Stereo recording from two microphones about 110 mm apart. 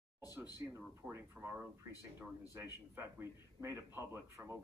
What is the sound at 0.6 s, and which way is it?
A man's voice, 20° right (ahead or behind).